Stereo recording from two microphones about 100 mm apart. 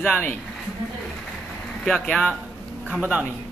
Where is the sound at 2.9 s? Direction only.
10° right (ahead or behind).